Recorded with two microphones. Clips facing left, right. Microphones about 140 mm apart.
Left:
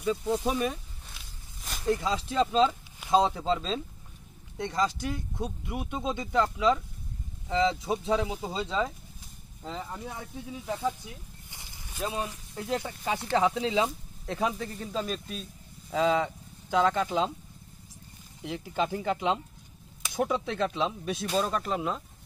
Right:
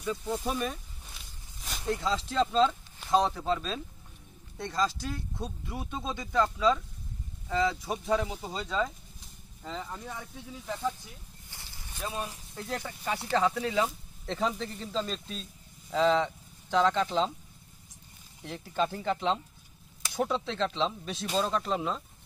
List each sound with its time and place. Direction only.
0.0 s speech: 15° left (ahead or behind)
1.1 s walk: centre (ahead or behind)
1.9 s speech: 15° left (ahead or behind)
9.7 s speech: 10° left (ahead or behind)
11.5 s a sound: 15° left (ahead or behind)
12.5 s speech: 15° left (ahead or behind)
18.4 s speech: 10° left (ahead or behind)